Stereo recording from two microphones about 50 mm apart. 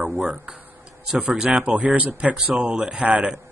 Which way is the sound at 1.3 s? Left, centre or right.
Centre.